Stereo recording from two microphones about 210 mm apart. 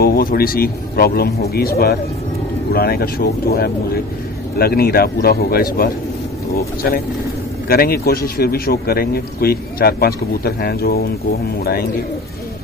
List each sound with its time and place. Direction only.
0.0 s speech: 45° left (ahead or behind)
7.6 s speech: 45° left (ahead or behind)